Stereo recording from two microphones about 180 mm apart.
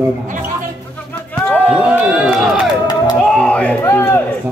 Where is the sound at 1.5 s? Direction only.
10° right (ahead or behind).